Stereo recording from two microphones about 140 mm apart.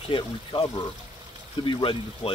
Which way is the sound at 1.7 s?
40° left (ahead or behind).